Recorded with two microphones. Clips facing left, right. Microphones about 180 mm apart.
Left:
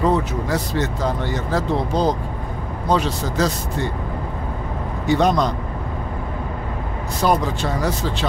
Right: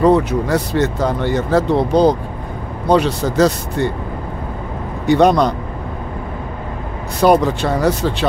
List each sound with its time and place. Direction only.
0.0 s speech: 65° right (ahead or behind)
5.0 s speech: 65° right (ahead or behind)
7.2 s speech: 65° right (ahead or behind)